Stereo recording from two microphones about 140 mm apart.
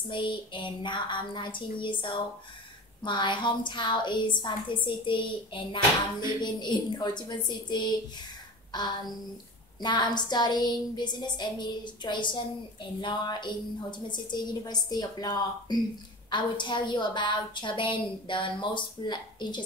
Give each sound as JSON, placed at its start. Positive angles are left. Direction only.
{"t": 0.1, "sound": "a woman's voice", "side_deg": 35}
{"t": 9.8, "sound": "a woman's voice", "side_deg": 30}